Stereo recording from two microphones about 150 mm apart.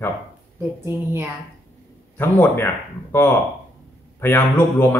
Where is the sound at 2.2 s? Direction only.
15° left (ahead or behind).